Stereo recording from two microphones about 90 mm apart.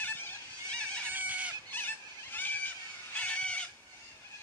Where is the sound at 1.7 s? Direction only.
20° left (ahead or behind).